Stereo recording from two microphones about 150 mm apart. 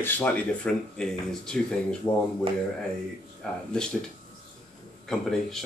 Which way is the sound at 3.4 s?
5° left (ahead or behind).